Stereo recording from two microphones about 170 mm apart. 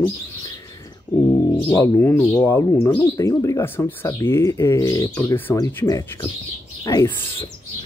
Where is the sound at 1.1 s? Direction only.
25° left (ahead or behind).